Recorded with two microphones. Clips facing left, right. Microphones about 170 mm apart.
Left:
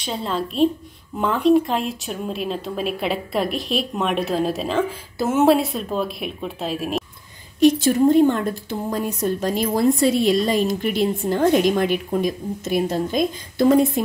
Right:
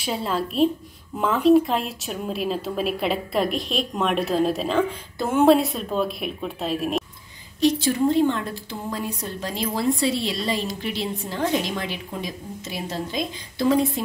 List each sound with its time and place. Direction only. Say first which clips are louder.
0.0 s speech: even; 5° right (ahead or behind)
7.6 s a woman's voice: left 5 dB; 50° left (ahead or behind)